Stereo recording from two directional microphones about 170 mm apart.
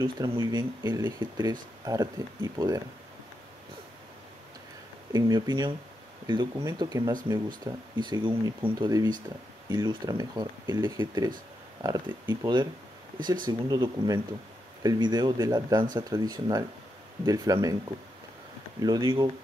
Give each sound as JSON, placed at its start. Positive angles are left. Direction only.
{"t": 0.0, "sound": "speech", "side_deg": -30}
{"t": 5.1, "sound": "speech", "side_deg": -25}